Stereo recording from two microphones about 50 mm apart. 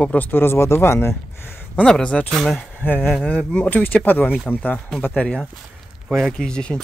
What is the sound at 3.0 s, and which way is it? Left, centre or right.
Speech, centre.